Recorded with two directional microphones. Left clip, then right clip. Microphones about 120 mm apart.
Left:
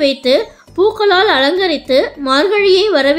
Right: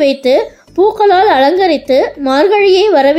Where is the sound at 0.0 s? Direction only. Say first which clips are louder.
Right 3 dB; 25° right (ahead or behind).